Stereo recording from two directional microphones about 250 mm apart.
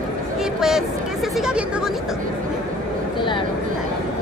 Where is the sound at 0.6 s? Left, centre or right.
Centre.